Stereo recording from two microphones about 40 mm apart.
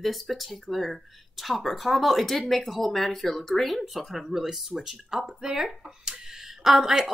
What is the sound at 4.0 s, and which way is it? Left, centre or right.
Speech, centre.